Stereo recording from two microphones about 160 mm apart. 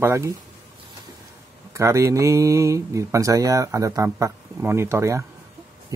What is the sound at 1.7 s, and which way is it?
Speech, 20° right (ahead or behind).